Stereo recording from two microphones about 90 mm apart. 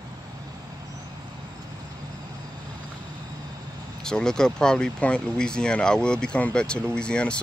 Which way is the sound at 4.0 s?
5° left (ahead or behind).